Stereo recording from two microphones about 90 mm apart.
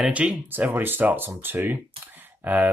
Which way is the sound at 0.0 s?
10° right (ahead or behind).